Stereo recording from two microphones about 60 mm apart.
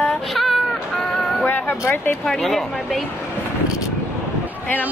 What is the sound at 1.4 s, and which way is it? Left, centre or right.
Speech, left.